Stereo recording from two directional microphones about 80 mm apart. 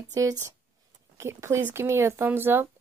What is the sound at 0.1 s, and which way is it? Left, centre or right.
Speech, right.